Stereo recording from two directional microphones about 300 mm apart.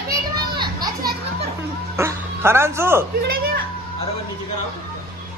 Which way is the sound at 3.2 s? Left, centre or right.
Right.